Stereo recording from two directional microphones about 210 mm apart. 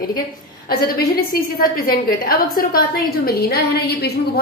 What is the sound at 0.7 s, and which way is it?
A woman's voice, 45° left (ahead or behind).